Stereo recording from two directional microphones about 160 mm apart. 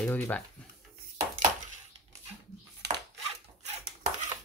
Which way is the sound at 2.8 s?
90° right.